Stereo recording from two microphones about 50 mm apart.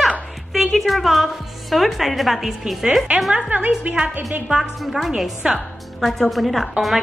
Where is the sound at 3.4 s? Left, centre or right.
Right.